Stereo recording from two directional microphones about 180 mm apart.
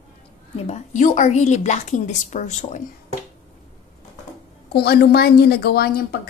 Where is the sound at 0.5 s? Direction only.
35° left (ahead or behind).